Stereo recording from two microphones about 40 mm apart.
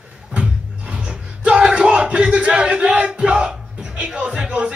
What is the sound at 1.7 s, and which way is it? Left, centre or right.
Battle cry, right.